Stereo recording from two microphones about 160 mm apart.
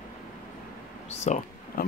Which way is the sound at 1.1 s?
45° left (ahead or behind).